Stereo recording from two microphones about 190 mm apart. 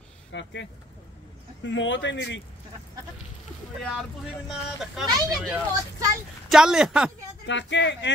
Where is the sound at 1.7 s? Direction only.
80° left.